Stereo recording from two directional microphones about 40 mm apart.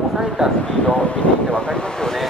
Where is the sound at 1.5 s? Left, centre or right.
Left.